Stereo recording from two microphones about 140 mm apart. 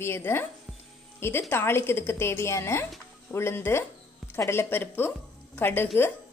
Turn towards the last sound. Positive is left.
turn(degrees=15)  # may be behind; listen again after turning